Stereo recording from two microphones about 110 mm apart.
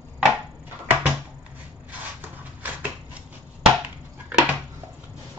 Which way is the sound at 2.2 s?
15° right (ahead or behind).